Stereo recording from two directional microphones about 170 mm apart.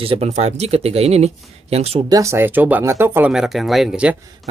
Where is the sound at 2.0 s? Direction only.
20° right (ahead or behind).